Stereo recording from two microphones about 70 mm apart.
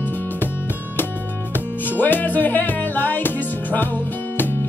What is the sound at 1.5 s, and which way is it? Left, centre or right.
Music, left.